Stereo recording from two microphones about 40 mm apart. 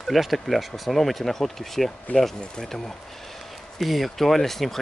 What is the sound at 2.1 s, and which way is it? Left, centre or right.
Speech, left.